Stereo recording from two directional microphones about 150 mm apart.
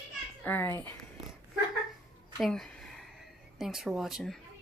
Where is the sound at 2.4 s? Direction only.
Centre (ahead or behind).